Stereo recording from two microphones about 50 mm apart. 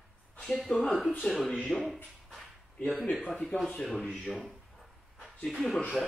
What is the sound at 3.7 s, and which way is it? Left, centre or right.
Speech, centre.